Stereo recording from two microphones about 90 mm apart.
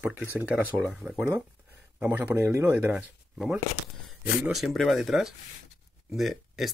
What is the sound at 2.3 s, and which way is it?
Speech, 30° right (ahead or behind).